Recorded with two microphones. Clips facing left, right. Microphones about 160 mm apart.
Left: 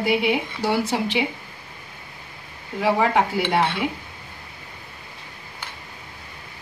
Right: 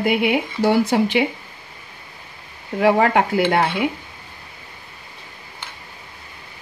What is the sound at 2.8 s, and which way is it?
Speech, 60° right (ahead or behind).